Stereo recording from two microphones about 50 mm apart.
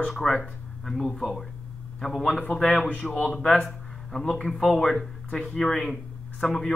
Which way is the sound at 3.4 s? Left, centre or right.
Left.